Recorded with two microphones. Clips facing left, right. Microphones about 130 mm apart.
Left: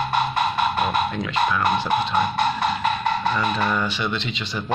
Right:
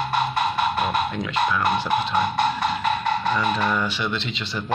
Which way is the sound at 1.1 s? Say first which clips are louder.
Left 1 dB; 5° right (ahead or behind).